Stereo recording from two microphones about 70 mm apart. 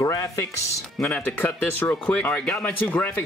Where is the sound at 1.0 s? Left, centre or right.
Left.